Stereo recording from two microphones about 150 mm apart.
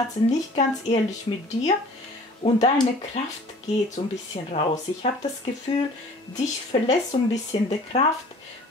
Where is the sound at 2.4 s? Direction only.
40° left (ahead or behind).